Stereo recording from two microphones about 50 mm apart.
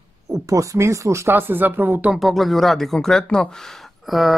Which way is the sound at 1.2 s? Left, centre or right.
Right.